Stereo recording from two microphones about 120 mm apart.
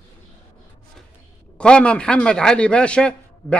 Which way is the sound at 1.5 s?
10° left (ahead or behind).